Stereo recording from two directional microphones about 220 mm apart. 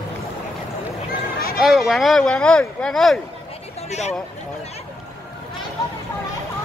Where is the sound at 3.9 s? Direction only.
30° left (ahead or behind).